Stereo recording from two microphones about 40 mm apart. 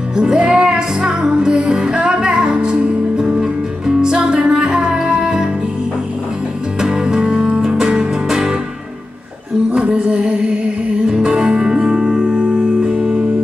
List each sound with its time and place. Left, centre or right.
0.1 s music: centre
6.8 s music: centre
9.8 s music: right
11.1 s music: centre